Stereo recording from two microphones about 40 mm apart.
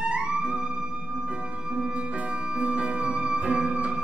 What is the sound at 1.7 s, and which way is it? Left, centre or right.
Music, right.